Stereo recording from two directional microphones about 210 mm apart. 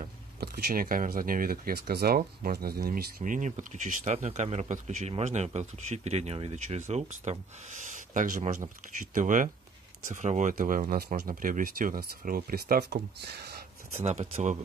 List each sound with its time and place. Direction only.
0.4 s speech: 45° right (ahead or behind)
14.0 s speech: 35° right (ahead or behind)